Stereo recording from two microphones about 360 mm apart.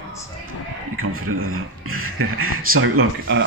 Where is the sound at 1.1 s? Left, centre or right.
Right.